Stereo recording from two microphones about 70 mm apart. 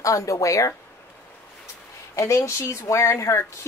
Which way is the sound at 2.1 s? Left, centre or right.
Left.